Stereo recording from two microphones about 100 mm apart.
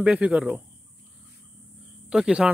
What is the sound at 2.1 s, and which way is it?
Speech, 10° right (ahead or behind).